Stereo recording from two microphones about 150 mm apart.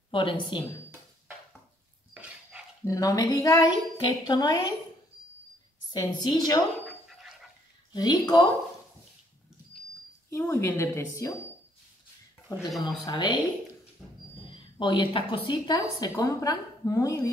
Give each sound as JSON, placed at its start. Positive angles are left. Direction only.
{"t": 0.1, "sound": "speech", "side_deg": 35}
{"t": 2.1, "sound": "dog", "side_deg": -10}
{"t": 2.8, "sound": "a woman's voice", "side_deg": 20}
{"t": 5.9, "sound": "a woman's voice", "side_deg": 25}
{"t": 7.9, "sound": "a woman's voice", "side_deg": 25}
{"t": 10.3, "sound": "a woman's voice", "side_deg": 20}
{"t": 12.5, "sound": "a woman's voice", "side_deg": 25}
{"t": 14.0, "sound": "a sound", "side_deg": -5}
{"t": 14.4, "sound": "a woman's voice", "side_deg": 35}